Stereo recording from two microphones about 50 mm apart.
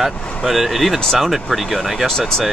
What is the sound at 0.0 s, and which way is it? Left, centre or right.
Speech, centre.